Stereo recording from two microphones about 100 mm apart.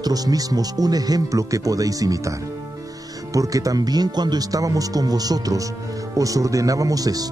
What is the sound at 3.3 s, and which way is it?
Speech, 35° right (ahead or behind).